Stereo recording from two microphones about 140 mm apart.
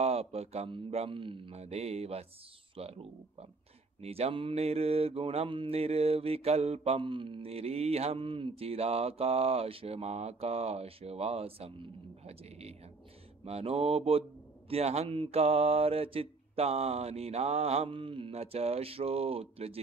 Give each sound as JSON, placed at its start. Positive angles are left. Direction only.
{"t": 0.0, "sound": "mantra", "side_deg": -45}